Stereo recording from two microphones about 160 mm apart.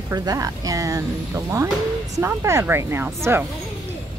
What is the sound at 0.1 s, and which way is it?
Speech, 20° right (ahead or behind).